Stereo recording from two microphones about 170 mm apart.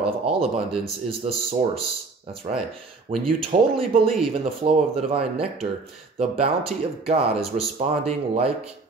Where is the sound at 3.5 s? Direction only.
45° right (ahead or behind).